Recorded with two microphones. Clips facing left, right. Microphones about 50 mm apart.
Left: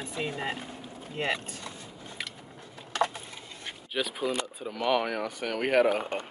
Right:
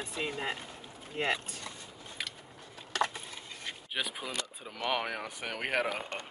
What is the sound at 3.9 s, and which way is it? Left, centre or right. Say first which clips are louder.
Speech: left 7 dB; centre.